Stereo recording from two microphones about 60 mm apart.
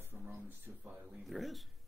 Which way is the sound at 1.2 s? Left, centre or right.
Centre.